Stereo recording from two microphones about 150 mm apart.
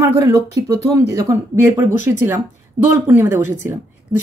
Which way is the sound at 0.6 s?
20° right (ahead or behind).